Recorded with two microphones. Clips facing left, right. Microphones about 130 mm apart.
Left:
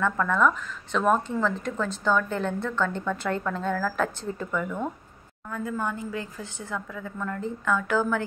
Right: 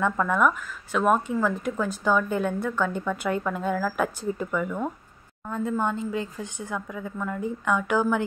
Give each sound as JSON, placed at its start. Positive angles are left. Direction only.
{"t": 0.0, "sound": "speech", "side_deg": -15}
{"t": 5.5, "sound": "speech", "side_deg": -25}